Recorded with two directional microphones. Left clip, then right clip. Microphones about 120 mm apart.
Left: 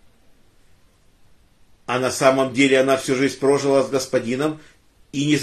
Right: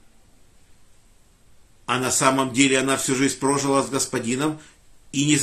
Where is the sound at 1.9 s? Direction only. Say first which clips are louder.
Left 3 dB; 25° right (ahead or behind).